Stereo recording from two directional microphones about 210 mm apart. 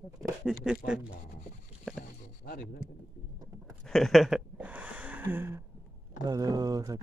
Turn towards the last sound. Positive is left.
turn(degrees=-15)  # may be behind; listen again after turning